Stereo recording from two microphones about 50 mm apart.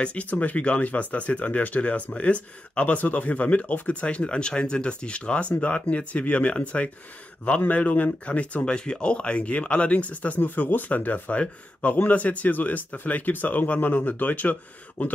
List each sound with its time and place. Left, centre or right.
0.0 s speech: left